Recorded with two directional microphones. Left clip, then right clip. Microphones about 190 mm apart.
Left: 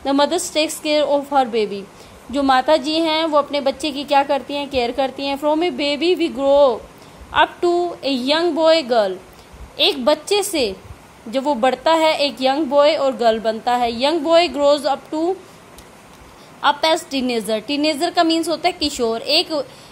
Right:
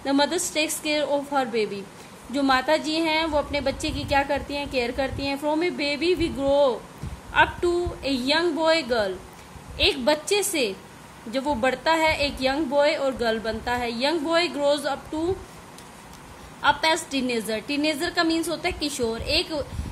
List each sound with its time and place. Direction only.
0.0 s a woman's voice: 25° left (ahead or behind)
16.6 s a woman's voice: 25° left (ahead or behind)